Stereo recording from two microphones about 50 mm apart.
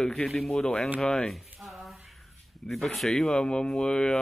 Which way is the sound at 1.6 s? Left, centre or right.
Centre.